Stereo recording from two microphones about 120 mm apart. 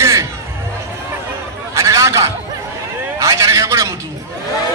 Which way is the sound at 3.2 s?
25° right (ahead or behind).